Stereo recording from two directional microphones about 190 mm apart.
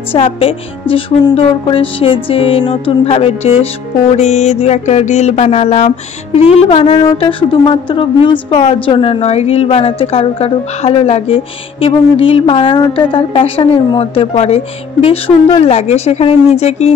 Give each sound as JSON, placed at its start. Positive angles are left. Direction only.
{"t": 0.1, "sound": "a woman's voice", "side_deg": 30}
{"t": 4.2, "sound": "a sound", "side_deg": 35}
{"t": 7.1, "sound": "a woman's voice", "side_deg": 25}